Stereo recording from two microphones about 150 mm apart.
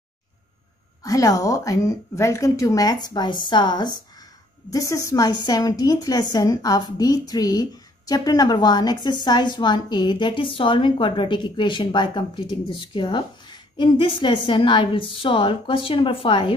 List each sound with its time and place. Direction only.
1.0 s a woman's voice: 20° left (ahead or behind)